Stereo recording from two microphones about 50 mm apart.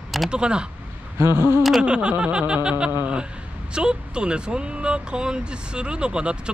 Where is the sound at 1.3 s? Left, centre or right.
Right.